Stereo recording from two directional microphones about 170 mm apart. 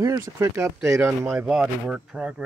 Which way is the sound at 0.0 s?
20° right (ahead or behind).